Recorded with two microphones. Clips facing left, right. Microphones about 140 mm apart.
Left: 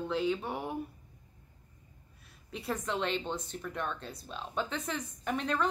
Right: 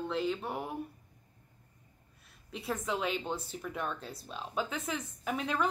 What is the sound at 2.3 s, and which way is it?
Speech, centre (ahead or behind).